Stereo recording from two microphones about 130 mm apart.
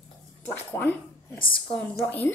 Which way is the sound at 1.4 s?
40° left (ahead or behind).